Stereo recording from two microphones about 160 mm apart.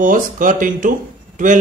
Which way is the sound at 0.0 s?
55° right (ahead or behind).